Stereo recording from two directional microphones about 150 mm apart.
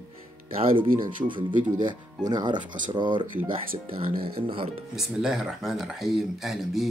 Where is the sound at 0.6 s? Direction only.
35° right (ahead or behind).